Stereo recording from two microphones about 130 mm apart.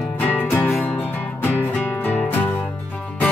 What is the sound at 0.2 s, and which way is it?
Music, 15° left (ahead or behind).